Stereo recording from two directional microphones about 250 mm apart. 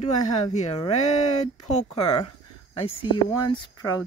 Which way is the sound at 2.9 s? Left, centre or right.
Left.